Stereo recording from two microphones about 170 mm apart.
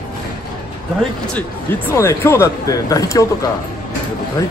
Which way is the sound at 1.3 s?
15° left (ahead or behind).